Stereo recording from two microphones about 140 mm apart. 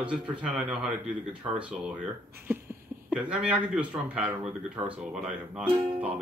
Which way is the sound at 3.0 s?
10° right (ahead or behind).